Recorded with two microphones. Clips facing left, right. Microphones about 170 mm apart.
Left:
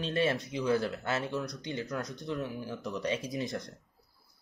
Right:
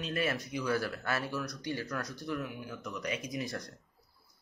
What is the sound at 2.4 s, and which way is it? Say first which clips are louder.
Speech: left 3 dB; 35° left (ahead or behind).